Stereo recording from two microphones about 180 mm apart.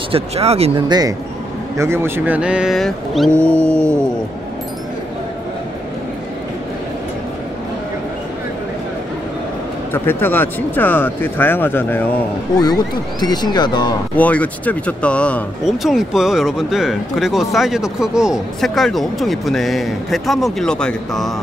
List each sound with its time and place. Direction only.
0.1 s speech: 35° right (ahead or behind)
0.8 s speech: 20° right (ahead or behind); by 4.0 s 5° left (ahead or behind)
9.9 s speech: 10° left (ahead or behind)
13.2 s speech: 25° left (ahead or behind)
14.1 s speech: 10° left (ahead or behind)